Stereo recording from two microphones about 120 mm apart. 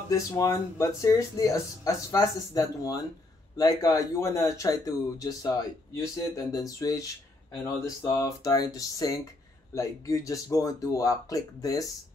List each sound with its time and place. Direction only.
0.1 s speech: 25° left (ahead or behind)